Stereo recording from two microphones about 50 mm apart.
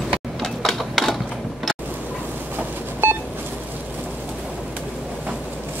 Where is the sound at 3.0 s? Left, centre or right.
Right.